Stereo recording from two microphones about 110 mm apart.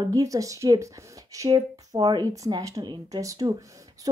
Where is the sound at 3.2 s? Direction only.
30° right (ahead or behind).